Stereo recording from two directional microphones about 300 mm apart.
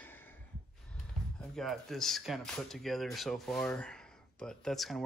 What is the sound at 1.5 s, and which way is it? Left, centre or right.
Speech, centre.